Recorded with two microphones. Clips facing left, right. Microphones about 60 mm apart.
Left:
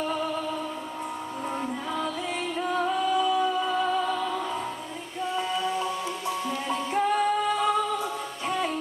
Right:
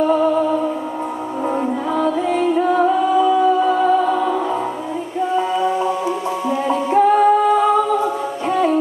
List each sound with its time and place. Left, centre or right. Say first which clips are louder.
0.0 s music: right 13 dB; right
2.0 s music: right 15 dB; right
6.5 s a capella: right 14 dB; right